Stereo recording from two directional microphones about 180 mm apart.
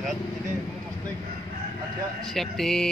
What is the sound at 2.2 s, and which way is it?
Speech, centre (ahead or behind).